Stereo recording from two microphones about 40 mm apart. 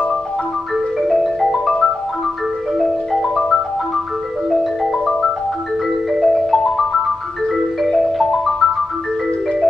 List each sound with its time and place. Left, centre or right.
1.0 s marimba: centre
2.8 s marimba: centre